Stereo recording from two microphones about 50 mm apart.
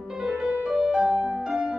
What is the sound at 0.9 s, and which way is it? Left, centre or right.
Music, centre.